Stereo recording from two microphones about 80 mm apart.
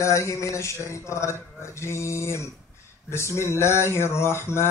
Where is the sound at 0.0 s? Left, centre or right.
Left.